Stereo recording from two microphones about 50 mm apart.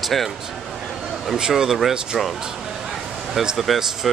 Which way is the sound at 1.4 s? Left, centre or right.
Centre.